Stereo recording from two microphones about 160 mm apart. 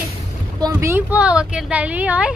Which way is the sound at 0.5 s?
20° right (ahead or behind).